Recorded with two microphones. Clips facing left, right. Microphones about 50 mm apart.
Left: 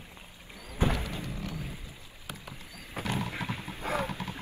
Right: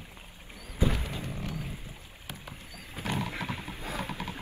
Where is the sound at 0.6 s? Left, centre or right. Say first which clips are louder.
Even; left.